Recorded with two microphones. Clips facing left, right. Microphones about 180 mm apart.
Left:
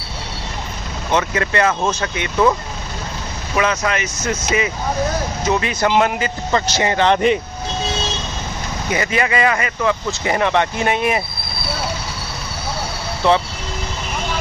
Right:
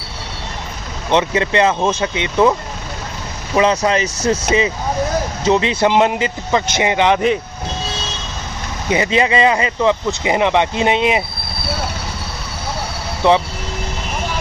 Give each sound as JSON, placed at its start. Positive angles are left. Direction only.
{"t": 1.1, "sound": "speech", "side_deg": -20}
{"t": 3.5, "sound": "speech", "side_deg": -30}
{"t": 8.9, "sound": "speech", "side_deg": -20}
{"t": 13.2, "sound": "speech", "side_deg": -15}